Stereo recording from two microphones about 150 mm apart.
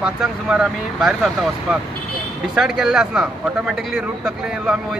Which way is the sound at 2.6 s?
5° right (ahead or behind).